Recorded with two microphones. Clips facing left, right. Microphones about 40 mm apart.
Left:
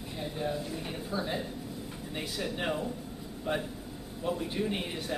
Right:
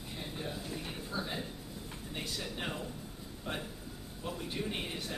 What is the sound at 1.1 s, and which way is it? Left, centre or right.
A man's voice, centre.